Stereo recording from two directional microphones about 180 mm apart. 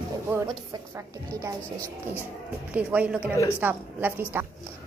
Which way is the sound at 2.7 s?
5° right (ahead or behind).